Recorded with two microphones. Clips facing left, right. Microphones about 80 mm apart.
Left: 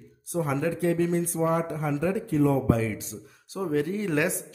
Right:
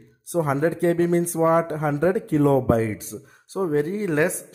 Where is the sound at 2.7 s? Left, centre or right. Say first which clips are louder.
Right 5 dB; right.